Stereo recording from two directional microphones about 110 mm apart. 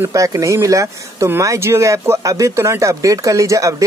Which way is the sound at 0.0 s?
30° right (ahead or behind).